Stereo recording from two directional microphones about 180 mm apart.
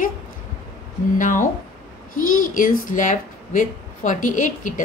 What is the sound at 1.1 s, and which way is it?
A woman's voice, 45° left (ahead or behind).